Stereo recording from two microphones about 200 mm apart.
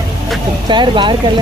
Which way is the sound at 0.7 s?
25° right (ahead or behind).